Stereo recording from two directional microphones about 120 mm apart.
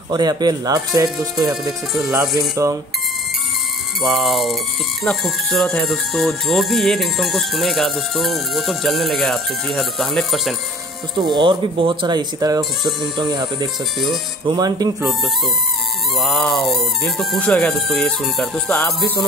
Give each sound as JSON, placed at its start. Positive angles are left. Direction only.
{"t": 0.1, "sound": "speech", "side_deg": -35}
{"t": 4.0, "sound": "speech", "side_deg": 0}
{"t": 11.1, "sound": "speech", "side_deg": -40}
{"t": 16.2, "sound": "speech", "side_deg": 0}